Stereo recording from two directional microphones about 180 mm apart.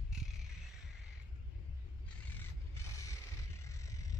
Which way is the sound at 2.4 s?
15° left (ahead or behind).